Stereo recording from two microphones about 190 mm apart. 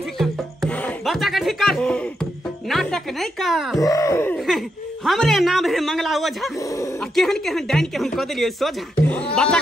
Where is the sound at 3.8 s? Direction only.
15° left (ahead or behind).